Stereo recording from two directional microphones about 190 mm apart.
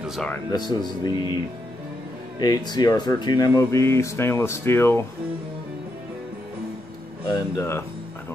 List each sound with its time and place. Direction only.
0.0 s speech: centre (ahead or behind)
0.3 s speech: 20° left (ahead or behind)
2.3 s speech: 20° left (ahead or behind)
7.5 s speech: 15° left (ahead or behind)